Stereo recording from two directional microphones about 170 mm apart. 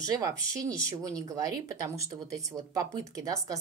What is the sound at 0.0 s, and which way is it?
A woman's voice, 20° right (ahead or behind).